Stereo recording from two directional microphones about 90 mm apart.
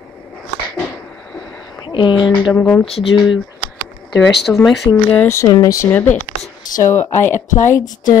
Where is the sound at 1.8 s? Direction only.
60° left (ahead or behind).